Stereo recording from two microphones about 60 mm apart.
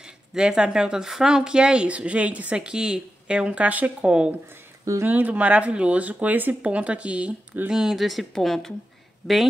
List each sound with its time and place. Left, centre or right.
0.0 s speech: centre
7.7 s speech: centre